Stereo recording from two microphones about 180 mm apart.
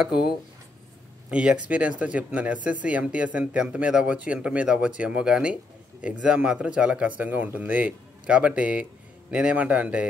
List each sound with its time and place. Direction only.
0.0 s speech: 5° right (ahead or behind)
1.3 s speech: 5° right (ahead or behind)